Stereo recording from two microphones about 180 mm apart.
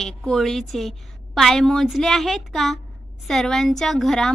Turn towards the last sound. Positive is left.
turn(degrees=0)  # may be behind; listen again after turning